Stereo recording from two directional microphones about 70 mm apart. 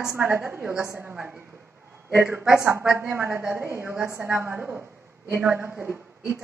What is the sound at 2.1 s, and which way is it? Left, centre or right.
A woman's voice, right.